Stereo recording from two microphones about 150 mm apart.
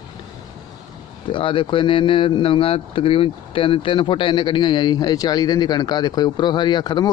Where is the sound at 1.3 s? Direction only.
35° left (ahead or behind).